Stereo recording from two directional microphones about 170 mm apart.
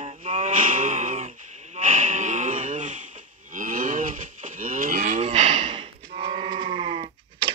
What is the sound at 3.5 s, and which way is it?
Moo, 50° right (ahead or behind).